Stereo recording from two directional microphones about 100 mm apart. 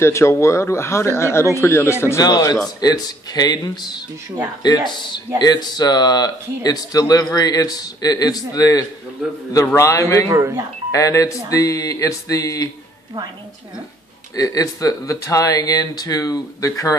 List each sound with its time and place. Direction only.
0.0 s speech: 25° left (ahead or behind)
2.2 s speech: 40° left (ahead or behind)
10.3 s speech: 30° right (ahead or behind)
10.9 s speech: 35° left (ahead or behind)
14.3 s speech: 35° left (ahead or behind)